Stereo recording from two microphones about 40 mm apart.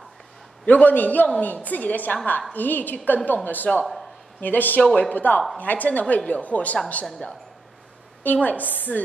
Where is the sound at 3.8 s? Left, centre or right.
Centre.